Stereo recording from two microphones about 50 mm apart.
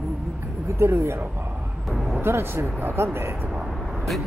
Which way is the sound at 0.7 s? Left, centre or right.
Right.